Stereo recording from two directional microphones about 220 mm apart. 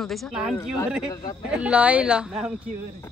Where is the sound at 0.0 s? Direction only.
Centre (ahead or behind).